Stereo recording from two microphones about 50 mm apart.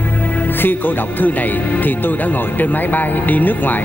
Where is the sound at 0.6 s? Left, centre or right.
Left.